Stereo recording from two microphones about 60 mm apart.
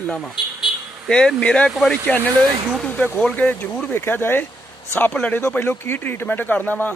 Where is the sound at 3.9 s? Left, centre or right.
Left.